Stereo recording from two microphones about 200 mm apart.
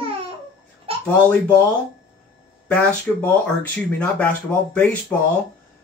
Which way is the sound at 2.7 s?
10° left (ahead or behind).